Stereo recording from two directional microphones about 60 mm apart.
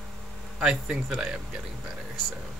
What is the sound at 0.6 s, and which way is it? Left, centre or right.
Speech, centre.